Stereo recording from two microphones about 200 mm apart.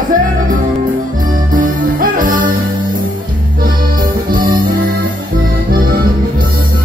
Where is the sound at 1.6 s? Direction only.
45° right (ahead or behind).